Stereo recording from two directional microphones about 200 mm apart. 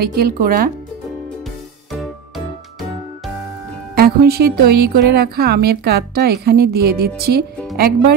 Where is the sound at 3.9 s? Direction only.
50° right (ahead or behind).